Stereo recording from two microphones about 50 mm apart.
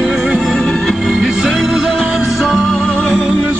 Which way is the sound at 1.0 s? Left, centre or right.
Centre.